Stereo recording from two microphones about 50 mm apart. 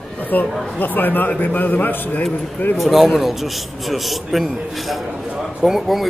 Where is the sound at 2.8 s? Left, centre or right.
Centre.